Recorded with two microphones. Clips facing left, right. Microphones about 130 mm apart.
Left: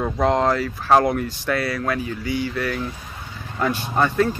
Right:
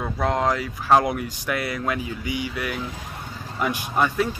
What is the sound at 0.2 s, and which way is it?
Speech, centre (ahead or behind).